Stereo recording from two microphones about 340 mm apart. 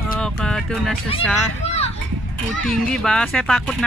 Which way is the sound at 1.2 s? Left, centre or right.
Centre.